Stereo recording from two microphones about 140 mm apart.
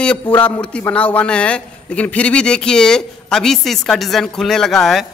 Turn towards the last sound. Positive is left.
turn(degrees=0)  # may be behind; listen again after turning